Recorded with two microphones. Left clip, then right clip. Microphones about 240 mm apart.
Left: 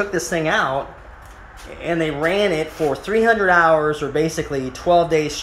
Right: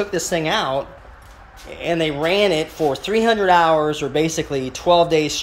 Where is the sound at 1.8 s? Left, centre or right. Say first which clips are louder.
Even; centre.